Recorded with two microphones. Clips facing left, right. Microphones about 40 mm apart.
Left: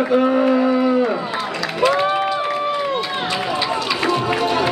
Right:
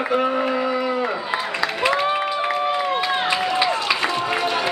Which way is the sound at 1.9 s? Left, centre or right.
Centre.